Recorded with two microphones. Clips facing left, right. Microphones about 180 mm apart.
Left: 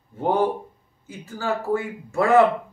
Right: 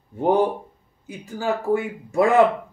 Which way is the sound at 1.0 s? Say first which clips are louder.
Right 2 dB; 15° right (ahead or behind).